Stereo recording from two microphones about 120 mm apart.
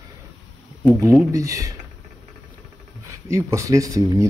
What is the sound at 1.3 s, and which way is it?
Speech, 30° right (ahead or behind).